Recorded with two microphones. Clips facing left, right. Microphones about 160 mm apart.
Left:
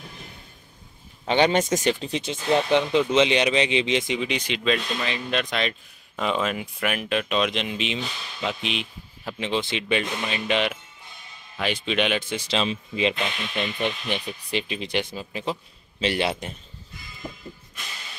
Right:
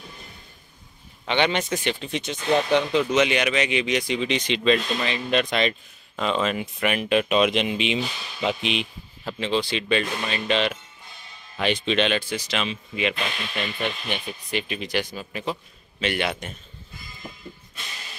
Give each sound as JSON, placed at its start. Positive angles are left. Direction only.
{"t": 1.2, "sound": "speech", "side_deg": 40}
{"t": 2.0, "sound": "speech", "side_deg": 30}
{"t": 2.7, "sound": "speech", "side_deg": 20}
{"t": 4.2, "sound": "speech", "side_deg": 10}
{"t": 6.1, "sound": "speech", "side_deg": 10}
{"t": 9.2, "sound": "speech", "side_deg": 15}